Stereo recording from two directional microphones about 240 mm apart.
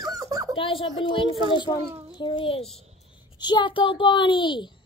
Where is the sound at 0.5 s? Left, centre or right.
Left.